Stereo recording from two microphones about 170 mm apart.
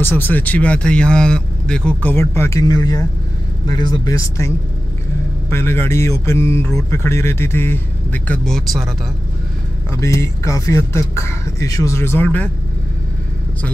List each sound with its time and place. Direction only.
0.0 s a man's voice: 10° left (ahead or behind)
9.8 s a man's voice: 15° left (ahead or behind)